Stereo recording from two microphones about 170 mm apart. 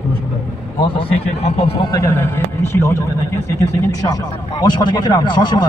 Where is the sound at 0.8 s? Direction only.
30° left (ahead or behind).